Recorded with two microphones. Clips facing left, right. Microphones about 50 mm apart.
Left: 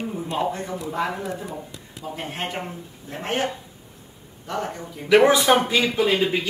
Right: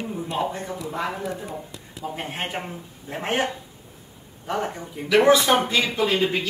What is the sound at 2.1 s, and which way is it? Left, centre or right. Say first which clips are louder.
A man's voice: left 1 dB; centre.